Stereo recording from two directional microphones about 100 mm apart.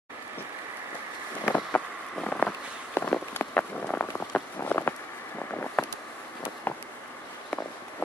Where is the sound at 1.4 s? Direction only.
15° left (ahead or behind).